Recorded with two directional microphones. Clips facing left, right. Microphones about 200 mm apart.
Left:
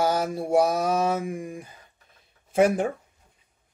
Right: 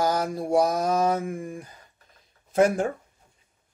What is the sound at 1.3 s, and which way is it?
Mantra, 15° left (ahead or behind).